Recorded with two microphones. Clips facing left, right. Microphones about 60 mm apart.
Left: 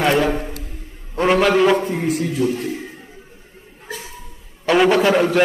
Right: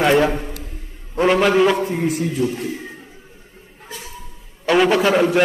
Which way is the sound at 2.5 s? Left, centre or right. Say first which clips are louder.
Left 2 dB; left.